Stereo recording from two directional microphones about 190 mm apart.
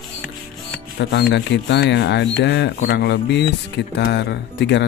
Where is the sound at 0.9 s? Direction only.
65° left (ahead or behind).